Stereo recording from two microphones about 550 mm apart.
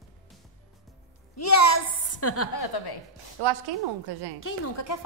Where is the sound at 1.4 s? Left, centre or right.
Left.